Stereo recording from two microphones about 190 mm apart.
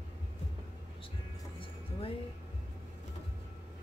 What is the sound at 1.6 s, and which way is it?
Music, 30° left (ahead or behind).